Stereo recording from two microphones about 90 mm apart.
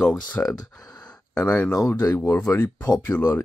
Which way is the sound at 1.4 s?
15° left (ahead or behind).